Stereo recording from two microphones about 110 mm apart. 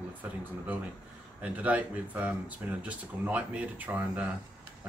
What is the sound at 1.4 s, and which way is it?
Speech, 15° right (ahead or behind).